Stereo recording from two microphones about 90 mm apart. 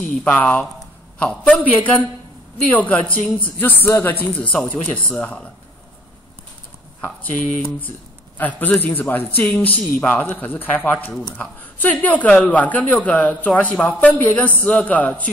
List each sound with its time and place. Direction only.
0.1 s a man's voice: 15° left (ahead or behind)
7.2 s a man's voice: 20° left (ahead or behind)